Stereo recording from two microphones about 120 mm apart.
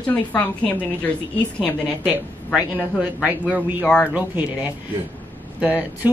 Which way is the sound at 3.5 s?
15° right (ahead or behind).